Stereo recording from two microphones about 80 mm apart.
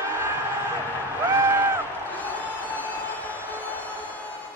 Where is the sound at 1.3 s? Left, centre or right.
Right.